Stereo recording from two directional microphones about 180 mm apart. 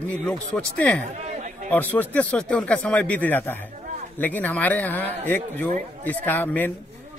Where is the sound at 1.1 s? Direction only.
40° right (ahead or behind).